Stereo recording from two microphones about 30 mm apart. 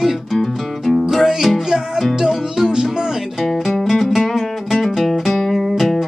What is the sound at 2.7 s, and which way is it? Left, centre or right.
Music, right.